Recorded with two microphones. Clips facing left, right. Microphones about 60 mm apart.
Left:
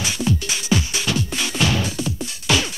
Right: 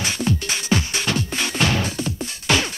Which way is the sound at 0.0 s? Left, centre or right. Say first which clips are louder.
Even; right.